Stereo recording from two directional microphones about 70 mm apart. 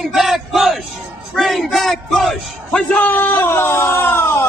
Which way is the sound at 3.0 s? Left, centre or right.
Left.